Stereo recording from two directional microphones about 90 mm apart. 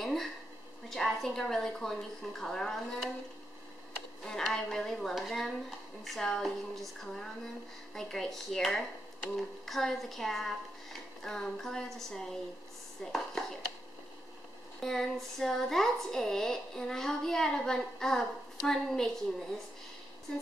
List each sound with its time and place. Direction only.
0.0 s a sound: 5° left (ahead or behind)
0.8 s a woman's voice: 5° left (ahead or behind)
4.2 s a woman's voice: 5° left (ahead or behind)
14.8 s a woman's voice: 5° left (ahead or behind)